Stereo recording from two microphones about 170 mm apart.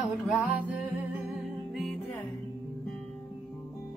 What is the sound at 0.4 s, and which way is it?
Music, 10° right (ahead or behind).